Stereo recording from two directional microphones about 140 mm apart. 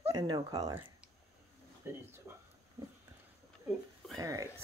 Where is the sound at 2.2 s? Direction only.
15° right (ahead or behind).